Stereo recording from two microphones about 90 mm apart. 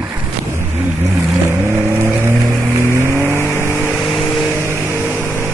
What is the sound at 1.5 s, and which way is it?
Vehicle, 30° right (ahead or behind).